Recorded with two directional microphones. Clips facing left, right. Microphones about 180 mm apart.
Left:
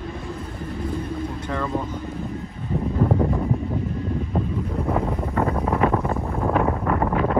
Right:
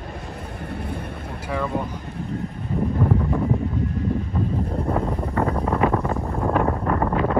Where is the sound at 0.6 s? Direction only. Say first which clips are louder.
Left 3 dB; 65° right (ahead or behind).